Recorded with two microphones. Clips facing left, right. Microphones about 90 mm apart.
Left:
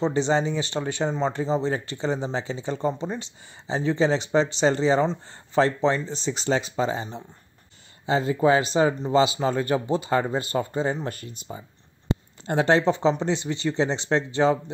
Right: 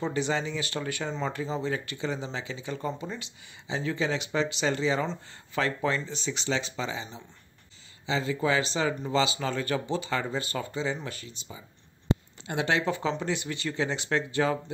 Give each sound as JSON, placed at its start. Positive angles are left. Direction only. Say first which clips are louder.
{"t": 0.0, "sound": "speech", "louder": "left 6 dB", "side_deg": 30}
{"t": 8.1, "sound": "speech", "louder": "left 7 dB", "side_deg": 40}
{"t": 12.4, "sound": "speech", "louder": "left 7 dB", "side_deg": 35}